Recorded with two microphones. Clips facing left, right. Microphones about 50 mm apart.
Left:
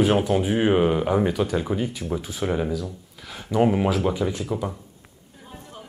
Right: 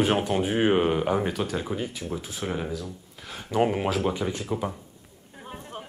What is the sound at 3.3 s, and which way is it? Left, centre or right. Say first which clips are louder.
Speech: left 3 dB; centre.